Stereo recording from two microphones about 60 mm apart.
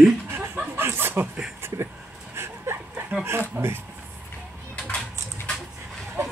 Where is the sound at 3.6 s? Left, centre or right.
Right.